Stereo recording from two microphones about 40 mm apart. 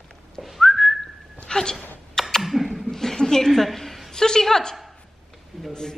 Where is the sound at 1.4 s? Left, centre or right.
Centre.